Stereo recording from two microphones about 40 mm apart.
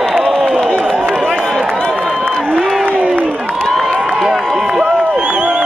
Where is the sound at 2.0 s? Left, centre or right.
Centre.